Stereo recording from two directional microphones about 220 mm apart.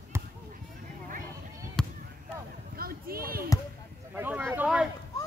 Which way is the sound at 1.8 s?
5° left (ahead or behind).